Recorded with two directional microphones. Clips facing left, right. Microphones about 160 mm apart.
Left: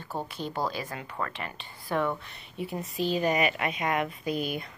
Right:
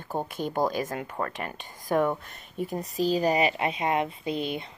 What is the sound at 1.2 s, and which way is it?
Speech, 35° right (ahead or behind).